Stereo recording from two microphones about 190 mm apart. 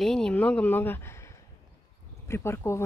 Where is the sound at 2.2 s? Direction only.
15° left (ahead or behind).